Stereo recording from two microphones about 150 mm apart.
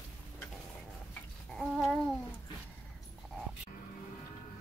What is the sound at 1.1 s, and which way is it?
Babbling, 5° left (ahead or behind).